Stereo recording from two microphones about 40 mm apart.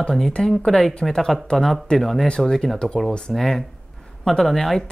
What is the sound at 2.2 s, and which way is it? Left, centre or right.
Speech, left.